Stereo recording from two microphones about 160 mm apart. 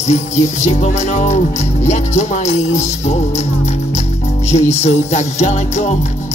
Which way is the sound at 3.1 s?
45° left (ahead or behind).